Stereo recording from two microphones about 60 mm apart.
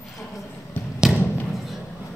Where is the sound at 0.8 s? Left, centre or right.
Left.